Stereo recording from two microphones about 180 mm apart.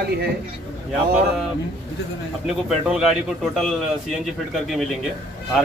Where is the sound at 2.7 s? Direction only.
Centre (ahead or behind).